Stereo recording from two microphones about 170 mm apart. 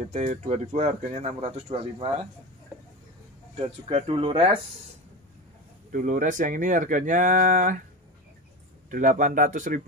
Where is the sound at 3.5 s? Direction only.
35° right (ahead or behind).